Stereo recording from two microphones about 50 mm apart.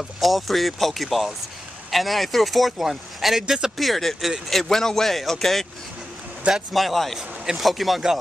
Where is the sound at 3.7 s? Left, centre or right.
Centre.